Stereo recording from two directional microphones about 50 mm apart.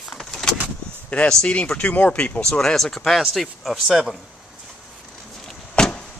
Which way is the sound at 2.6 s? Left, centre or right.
Centre.